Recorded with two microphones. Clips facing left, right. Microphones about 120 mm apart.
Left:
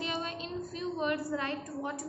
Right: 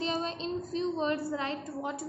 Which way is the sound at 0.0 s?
30° right (ahead or behind).